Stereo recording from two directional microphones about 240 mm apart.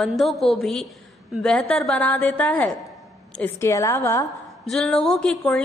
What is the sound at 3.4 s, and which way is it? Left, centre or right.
Speech, centre.